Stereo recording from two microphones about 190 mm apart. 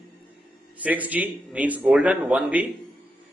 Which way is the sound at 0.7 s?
10° right (ahead or behind).